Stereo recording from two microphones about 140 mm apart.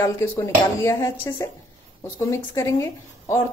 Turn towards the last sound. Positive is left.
turn(degrees=25)  # may be behind; listen again after turning